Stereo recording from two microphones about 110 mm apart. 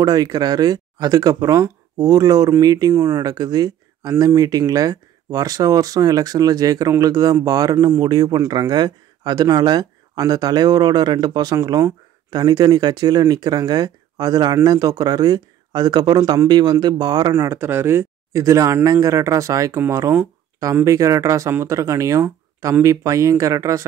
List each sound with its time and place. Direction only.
0.0 s speech: 35° right (ahead or behind)
17.3 s speech: 25° right (ahead or behind)